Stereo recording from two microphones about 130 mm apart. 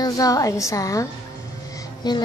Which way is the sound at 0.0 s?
25° left (ahead or behind).